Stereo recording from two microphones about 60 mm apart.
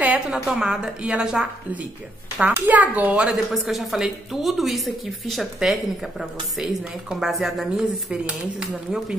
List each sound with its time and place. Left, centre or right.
0.3 s a woman's voice: centre
2.5 s a child's voice: right
3.3 s speech: centre